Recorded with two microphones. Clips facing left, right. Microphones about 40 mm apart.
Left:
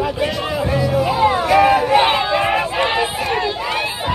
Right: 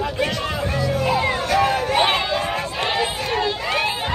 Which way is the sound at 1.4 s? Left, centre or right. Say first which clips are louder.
Left 7 dB; left.